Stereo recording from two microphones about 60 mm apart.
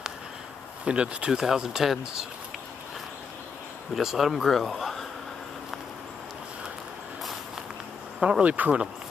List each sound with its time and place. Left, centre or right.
0.8 s speech: centre
3.9 s speech: centre
8.2 s speech: centre